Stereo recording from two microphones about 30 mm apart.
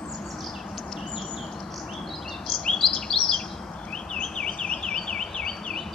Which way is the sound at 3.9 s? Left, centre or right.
Left.